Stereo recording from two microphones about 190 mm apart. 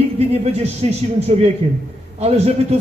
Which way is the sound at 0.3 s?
30° right (ahead or behind).